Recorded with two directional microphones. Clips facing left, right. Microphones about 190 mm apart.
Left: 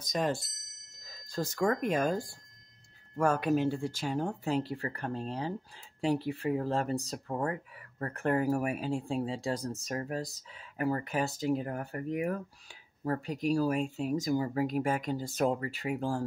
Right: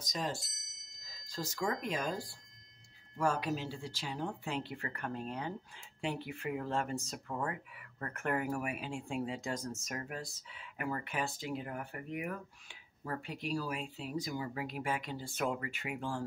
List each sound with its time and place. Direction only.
0.0 s speech: 55° left (ahead or behind); by 16.3 s 40° left (ahead or behind)